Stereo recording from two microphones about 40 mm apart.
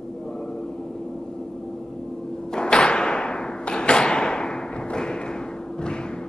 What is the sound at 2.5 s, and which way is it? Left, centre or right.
Thump, left.